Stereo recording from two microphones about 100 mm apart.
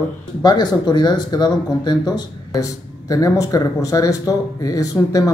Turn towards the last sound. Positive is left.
turn(degrees=35)  # may be behind; listen again after turning